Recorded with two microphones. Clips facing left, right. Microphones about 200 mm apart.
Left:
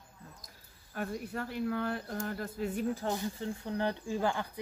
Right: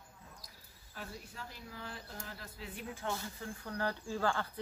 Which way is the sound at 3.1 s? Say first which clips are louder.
Left 7 dB; 20° left (ahead or behind).